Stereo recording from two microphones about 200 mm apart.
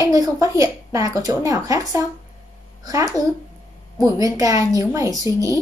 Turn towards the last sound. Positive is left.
turn(degrees=-15)  # may be behind; listen again after turning